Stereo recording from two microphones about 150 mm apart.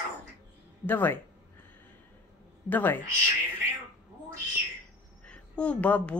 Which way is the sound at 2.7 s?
10° left (ahead or behind).